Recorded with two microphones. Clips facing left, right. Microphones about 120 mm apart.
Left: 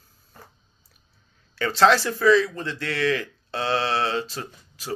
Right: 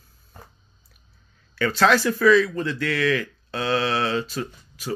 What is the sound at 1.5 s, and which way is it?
Speech, 30° left (ahead or behind).